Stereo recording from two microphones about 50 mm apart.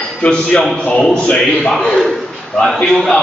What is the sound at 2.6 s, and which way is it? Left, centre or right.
Speech, centre.